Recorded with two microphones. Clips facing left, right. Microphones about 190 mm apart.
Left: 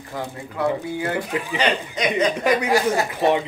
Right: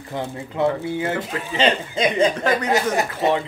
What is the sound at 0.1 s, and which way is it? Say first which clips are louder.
Speech: right 3 dB; 25° right (ahead or behind).